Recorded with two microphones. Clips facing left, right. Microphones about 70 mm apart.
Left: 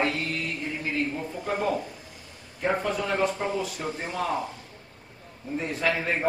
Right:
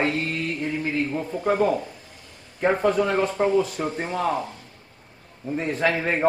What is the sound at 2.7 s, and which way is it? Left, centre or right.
Speech, right.